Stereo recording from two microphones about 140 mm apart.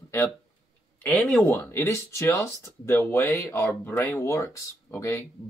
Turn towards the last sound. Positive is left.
turn(degrees=20)  # may be behind; listen again after turning